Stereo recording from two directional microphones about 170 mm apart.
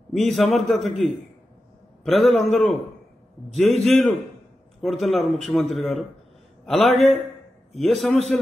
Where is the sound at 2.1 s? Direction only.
Centre (ahead or behind).